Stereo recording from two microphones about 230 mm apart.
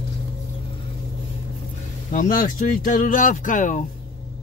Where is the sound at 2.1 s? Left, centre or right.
Left.